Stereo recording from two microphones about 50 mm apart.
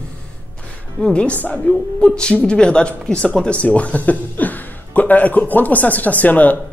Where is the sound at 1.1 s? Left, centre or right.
Left.